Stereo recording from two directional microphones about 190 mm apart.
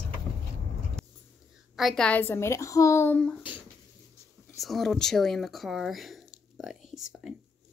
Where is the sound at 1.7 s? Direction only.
Centre (ahead or behind).